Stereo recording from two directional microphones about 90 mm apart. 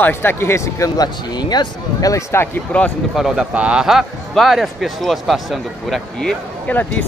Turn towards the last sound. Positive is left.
turn(degrees=20)  # may be behind; listen again after turning